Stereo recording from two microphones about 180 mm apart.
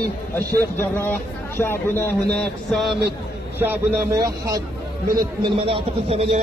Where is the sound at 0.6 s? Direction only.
10° left (ahead or behind).